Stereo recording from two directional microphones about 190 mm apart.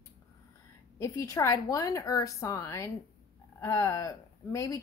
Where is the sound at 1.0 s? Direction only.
15° left (ahead or behind).